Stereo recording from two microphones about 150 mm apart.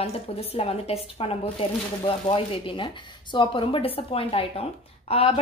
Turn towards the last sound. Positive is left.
turn(degrees=40)  # may be behind; listen again after turning